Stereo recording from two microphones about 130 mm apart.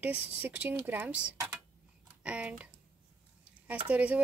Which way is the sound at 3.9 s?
10° right (ahead or behind).